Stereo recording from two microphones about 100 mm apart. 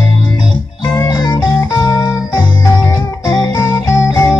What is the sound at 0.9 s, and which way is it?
Music, 30° left (ahead or behind).